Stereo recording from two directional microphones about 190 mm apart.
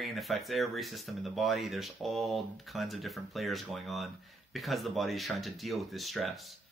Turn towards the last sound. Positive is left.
turn(degrees=0)  # may be behind; listen again after turning